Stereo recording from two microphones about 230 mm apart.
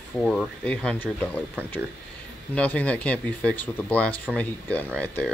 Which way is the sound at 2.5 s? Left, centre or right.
Centre.